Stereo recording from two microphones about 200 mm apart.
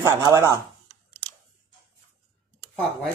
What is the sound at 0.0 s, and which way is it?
Speech, 15° right (ahead or behind).